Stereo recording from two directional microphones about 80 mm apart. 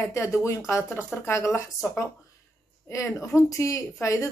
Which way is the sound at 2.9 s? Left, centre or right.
Left.